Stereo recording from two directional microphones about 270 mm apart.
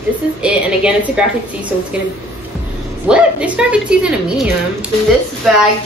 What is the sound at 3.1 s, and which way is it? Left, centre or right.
Speech, centre.